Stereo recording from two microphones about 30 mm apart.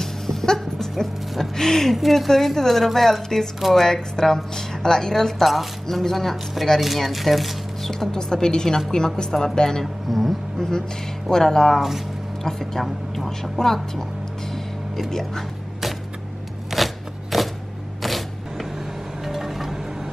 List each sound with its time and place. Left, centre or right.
0.0 s music: centre
0.9 s a woman's voice: centre
2.0 s a woman's voice: centre; by 5.3 s left
5.4 s a woman's voice: centre
8.1 s speech: left
10.0 s speech: centre
10.6 s a woman's voice: centre
12.8 s speech: centre
13.4 s a woman's voice: centre
15.0 s a woman's voice: centre
16.7 s scissors: centre
18.0 s a sound: centre
19.2 s music: centre